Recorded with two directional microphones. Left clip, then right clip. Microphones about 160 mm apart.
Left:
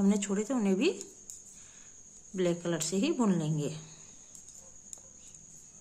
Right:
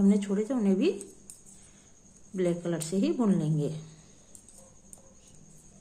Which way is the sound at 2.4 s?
20° left (ahead or behind).